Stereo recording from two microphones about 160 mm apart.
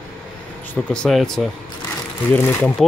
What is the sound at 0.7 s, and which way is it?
Speech, 5° left (ahead or behind).